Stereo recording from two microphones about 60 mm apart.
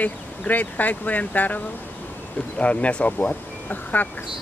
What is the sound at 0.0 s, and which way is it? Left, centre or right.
Speech, left.